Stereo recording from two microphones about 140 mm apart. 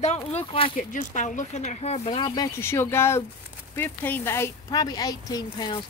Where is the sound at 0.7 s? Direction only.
65° left (ahead or behind); by 2.3 s 40° left (ahead or behind).